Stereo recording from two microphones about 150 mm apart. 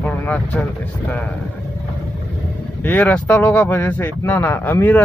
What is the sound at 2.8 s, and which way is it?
Speech, 10° left (ahead or behind).